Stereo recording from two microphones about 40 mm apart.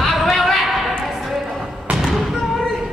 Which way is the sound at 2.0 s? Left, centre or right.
Centre.